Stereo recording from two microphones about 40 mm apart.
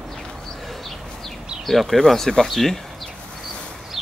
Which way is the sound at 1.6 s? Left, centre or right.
Centre.